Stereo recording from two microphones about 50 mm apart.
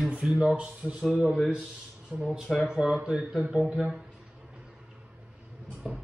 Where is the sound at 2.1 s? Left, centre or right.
Right.